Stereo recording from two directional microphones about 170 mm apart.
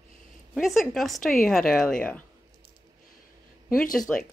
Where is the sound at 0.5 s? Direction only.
Centre (ahead or behind).